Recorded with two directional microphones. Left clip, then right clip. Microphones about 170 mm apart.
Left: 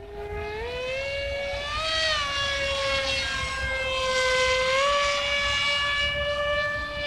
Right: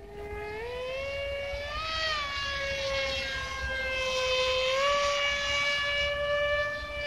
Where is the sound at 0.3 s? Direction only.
25° left (ahead or behind).